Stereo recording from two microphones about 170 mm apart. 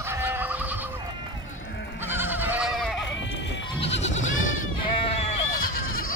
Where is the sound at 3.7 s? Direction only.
35° left (ahead or behind).